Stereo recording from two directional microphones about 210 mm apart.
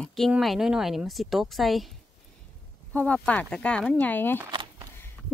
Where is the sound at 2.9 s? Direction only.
5° left (ahead or behind).